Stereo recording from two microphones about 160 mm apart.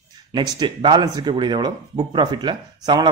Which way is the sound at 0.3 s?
25° right (ahead or behind).